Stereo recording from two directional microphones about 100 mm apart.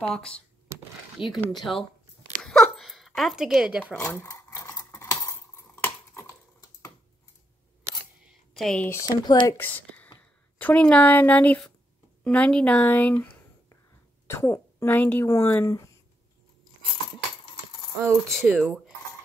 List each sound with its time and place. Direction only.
0.0 s a woman's voice: 10° left (ahead or behind)
0.7 s a sound: 25° right (ahead or behind)
1.1 s speech: centre (ahead or behind)
2.4 s dog: 5° left (ahead or behind)
3.9 s a sound: 25° left (ahead or behind)
8.3 s a sound: centre (ahead or behind)
8.7 s speech: 20° left (ahead or behind)
9.0 s speech: 40° left (ahead or behind)
9.6 s a woman's voice: 15° left (ahead or behind)
14.2 s speech: 30° left (ahead or behind)
17.1 s a sound: 55° left (ahead or behind)
18.5 s speech: centre (ahead or behind)